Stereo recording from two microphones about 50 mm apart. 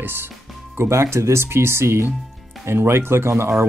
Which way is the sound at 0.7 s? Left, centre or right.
Right.